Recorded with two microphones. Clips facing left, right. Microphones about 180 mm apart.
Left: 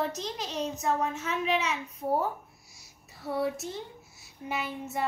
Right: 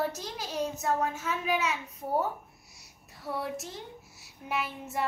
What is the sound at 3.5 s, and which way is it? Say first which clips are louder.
Speech: left 2 dB; centre (ahead or behind).